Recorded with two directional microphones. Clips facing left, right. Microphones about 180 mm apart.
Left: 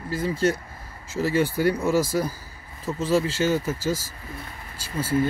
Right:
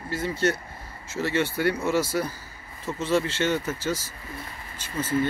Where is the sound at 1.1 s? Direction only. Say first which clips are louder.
Left 3 dB; 35° left (ahead or behind).